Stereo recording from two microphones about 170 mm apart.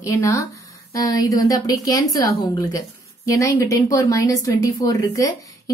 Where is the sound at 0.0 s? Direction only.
20° left (ahead or behind).